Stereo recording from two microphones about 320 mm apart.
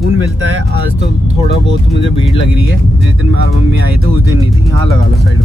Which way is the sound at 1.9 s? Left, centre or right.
Centre.